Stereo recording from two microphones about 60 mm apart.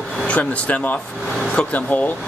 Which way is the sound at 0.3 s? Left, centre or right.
Left.